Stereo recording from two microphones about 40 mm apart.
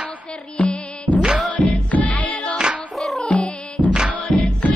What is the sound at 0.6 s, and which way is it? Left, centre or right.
Music, left.